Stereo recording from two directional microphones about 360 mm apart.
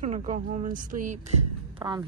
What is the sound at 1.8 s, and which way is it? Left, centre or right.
Speech, centre.